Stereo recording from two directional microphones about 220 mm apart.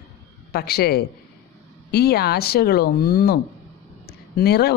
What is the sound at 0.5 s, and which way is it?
A man's voice, 45° left (ahead or behind).